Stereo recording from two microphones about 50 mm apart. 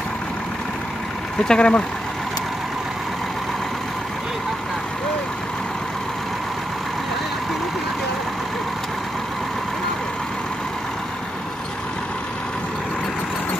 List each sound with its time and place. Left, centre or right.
1.5 s speech: left